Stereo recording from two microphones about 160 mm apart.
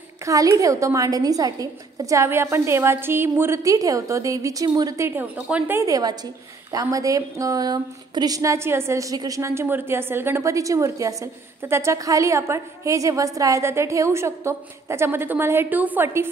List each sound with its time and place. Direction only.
0.2 s a woman's voice: 20° right (ahead or behind)